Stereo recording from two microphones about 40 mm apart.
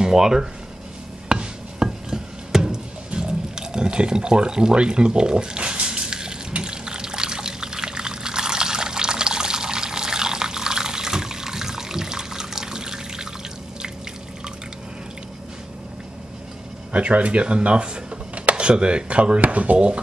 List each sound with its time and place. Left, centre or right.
0.0 s speech: centre
1.3 s music: centre
3.1 s a sound: centre
6.6 s pour: centre
16.9 s speech: right